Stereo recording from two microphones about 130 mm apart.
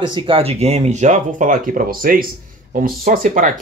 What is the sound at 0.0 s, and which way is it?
Speech, 40° right (ahead or behind).